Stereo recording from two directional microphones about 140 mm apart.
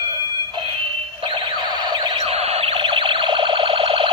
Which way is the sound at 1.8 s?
30° right (ahead or behind).